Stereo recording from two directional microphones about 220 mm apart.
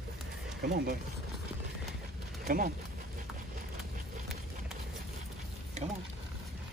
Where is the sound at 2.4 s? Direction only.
40° right (ahead or behind).